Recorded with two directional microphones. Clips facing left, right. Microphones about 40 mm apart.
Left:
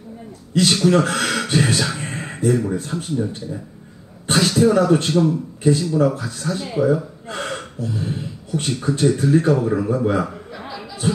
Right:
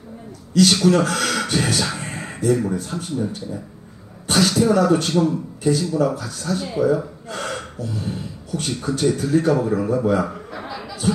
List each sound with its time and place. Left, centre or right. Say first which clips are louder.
0.5 s a man's voice: right 1 dB; left
2.0 s a sound: left 2 dB; left
4.3 s speech: left 1 dB; left
9.6 s speech: even; centre